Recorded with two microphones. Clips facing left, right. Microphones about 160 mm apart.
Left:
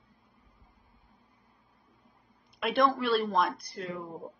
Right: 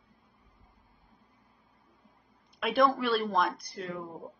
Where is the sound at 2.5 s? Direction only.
Centre (ahead or behind).